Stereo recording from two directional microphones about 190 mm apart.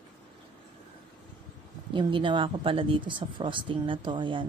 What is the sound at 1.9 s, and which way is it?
Speech, 25° right (ahead or behind).